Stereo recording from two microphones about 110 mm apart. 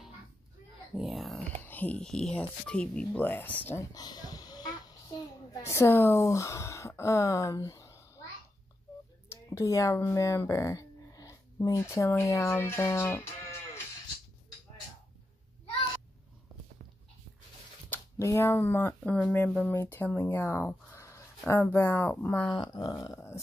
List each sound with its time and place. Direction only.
0.9 s speech: centre (ahead or behind)
1.6 s speech: 15° left (ahead or behind)
3.9 s a sound: 35° left (ahead or behind)
5.7 s speech: 20° left (ahead or behind)
9.3 s speech: 30° left (ahead or behind)
17.8 s a sound: 15° left (ahead or behind)
18.3 s speech: 25° left (ahead or behind)
22.5 s speech: 40° left (ahead or behind)